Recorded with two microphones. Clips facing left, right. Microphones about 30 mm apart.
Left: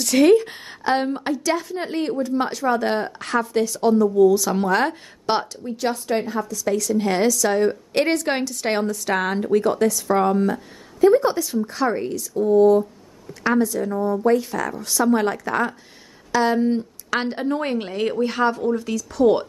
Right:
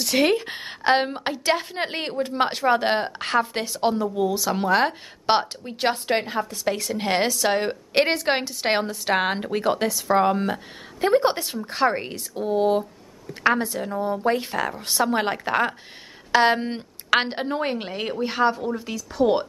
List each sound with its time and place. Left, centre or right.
0.0 s a woman's voice: centre
0.3 s a woman's voice: right
4.4 s a woman's voice: centre
5.6 s a woman's voice: right
7.9 s a woman's voice: right
10.3 s a woman's voice: right
17.6 s a woman's voice: centre